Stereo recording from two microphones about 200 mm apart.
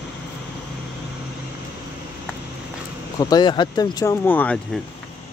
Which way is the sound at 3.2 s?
20° left (ahead or behind).